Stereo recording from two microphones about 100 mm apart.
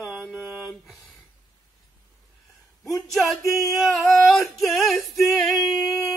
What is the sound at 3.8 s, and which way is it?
Female singing, centre (ahead or behind).